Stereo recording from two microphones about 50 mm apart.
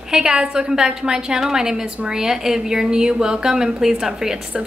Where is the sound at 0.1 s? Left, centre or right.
Centre.